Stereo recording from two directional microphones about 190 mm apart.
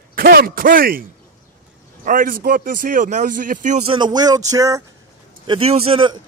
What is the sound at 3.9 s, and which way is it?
Speech, 25° right (ahead or behind).